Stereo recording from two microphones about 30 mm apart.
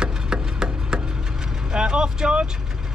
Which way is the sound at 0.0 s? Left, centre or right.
Right.